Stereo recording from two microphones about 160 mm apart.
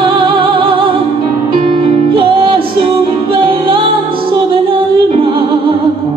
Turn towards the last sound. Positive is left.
turn(degrees=-35)  # may be behind; listen again after turning